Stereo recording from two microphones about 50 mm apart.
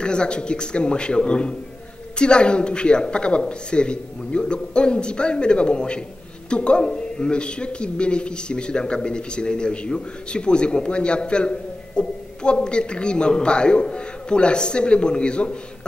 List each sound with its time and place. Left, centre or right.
0.0 s a man's voice: centre